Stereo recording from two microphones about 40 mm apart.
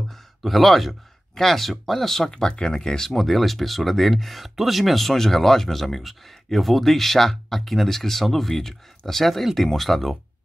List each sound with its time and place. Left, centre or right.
0.4 s speech: centre
2.2 s speech: centre
3.1 s speech: centre